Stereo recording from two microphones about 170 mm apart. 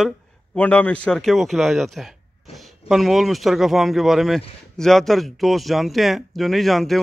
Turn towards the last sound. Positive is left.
turn(degrees=0)  # may be behind; listen again after turning